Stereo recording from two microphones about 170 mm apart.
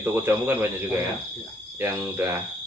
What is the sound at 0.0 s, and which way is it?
Speech, 15° right (ahead or behind).